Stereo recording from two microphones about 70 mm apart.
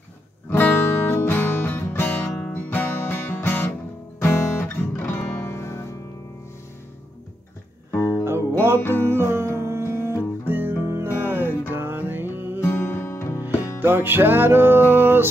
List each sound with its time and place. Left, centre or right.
0.5 s music: left
7.9 s music: left
8.2 s music: right
8.7 s music: left
9.0 s music: right
12.6 s music: left
13.7 s music: right